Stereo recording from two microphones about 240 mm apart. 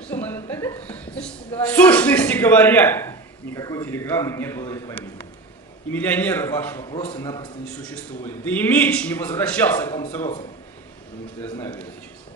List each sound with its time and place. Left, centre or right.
0.0 s a woman's voice: centre
6.9 s a man's voice: left
7.2 s a woman's voice: centre
11.5 s a woman's voice: centre